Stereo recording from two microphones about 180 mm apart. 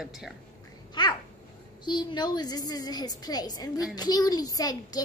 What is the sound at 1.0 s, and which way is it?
A woman's voice, 25° left (ahead or behind).